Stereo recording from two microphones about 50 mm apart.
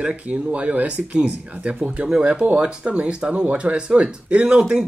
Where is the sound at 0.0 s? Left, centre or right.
Right.